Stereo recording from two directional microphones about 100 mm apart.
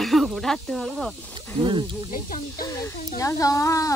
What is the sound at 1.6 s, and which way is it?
Speech, 55° right (ahead or behind).